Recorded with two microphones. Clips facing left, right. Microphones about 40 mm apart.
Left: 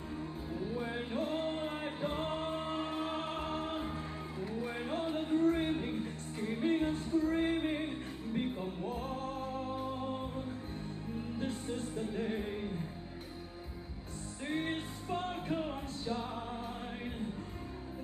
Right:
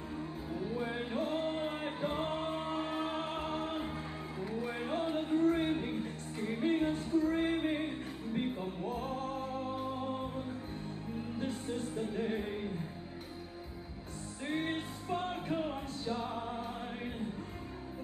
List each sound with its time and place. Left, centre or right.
0.8 s music: centre
11.3 s music: centre
14.4 s music: centre